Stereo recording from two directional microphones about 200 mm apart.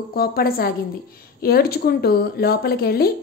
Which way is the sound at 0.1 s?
50° left (ahead or behind).